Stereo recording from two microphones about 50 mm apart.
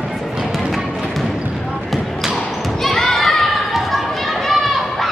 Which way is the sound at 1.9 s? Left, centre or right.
Centre.